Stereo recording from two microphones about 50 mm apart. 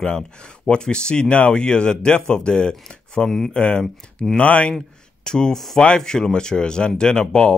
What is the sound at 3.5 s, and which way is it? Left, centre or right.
Speech, left.